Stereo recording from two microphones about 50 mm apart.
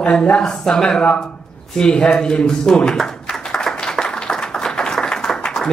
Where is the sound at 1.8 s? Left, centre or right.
Centre.